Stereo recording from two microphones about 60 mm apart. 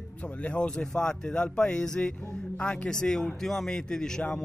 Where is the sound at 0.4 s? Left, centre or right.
Centre.